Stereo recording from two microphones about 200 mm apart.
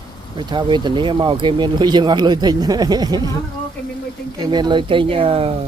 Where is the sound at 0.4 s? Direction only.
20° right (ahead or behind).